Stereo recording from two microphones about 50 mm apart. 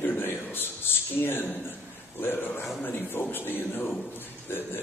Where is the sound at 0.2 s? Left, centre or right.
Left.